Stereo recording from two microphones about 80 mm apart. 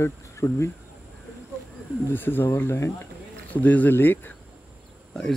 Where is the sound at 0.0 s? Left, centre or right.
Left.